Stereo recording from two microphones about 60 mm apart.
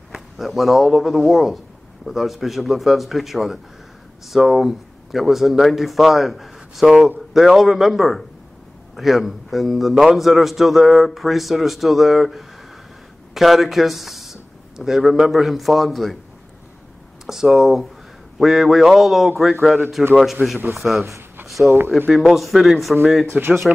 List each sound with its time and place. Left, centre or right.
0.1 s a man's voice: centre
17.3 s a man's voice: centre
20.4 s a man's voice: right
20.7 s a man's voice: centre
21.6 s speech: right
22.3 s a man's voice: centre
23.3 s a man's voice: right